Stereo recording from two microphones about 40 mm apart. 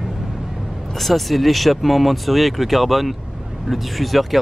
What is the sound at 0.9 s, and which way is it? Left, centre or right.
Speech, centre.